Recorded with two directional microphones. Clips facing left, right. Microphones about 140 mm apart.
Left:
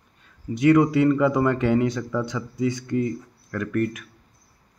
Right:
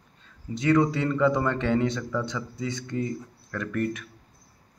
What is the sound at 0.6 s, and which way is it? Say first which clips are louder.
Speech: left 5 dB; 15° left (ahead or behind).